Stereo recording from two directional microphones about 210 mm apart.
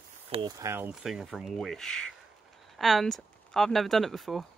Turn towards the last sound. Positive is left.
turn(degrees=0)  # may be behind; listen again after turning